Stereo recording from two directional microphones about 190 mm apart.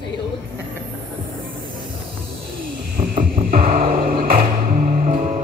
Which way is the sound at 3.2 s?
50° right (ahead or behind).